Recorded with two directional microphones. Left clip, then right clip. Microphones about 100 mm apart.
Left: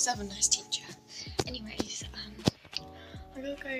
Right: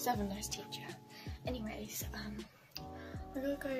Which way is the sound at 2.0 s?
30° right (ahead or behind).